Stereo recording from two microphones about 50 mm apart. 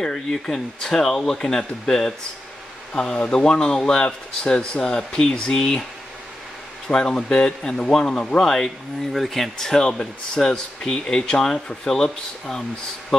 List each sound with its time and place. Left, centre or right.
0.0 s speech: centre
6.9 s speech: centre